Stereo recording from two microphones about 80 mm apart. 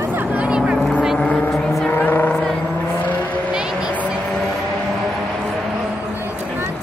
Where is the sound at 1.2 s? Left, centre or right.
Centre.